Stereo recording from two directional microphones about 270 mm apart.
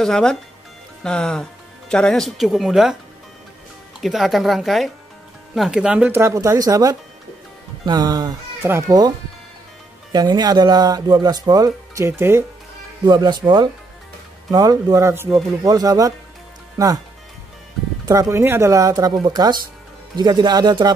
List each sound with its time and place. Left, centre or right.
0.0 s speech: centre
4.0 s speech: centre
10.1 s speech: centre
18.0 s speech: centre